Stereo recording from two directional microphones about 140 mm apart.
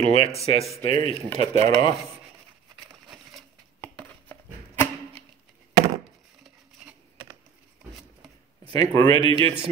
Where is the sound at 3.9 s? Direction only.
10° left (ahead or behind).